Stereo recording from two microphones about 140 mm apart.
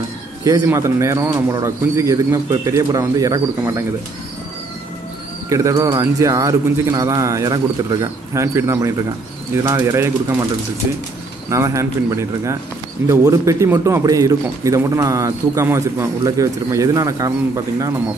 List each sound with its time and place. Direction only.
0.4 s speech: 25° right (ahead or behind)
5.5 s speech: 25° right (ahead or behind)
11.5 s speech: 20° right (ahead or behind)